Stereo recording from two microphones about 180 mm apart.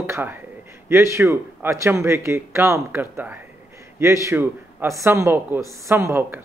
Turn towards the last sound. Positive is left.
turn(degrees=-15)  # may be behind; listen again after turning